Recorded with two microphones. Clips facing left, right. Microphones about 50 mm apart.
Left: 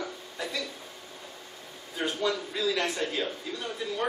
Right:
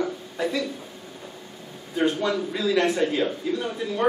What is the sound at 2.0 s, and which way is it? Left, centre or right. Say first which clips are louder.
A man's voice: right 6 dB; centre.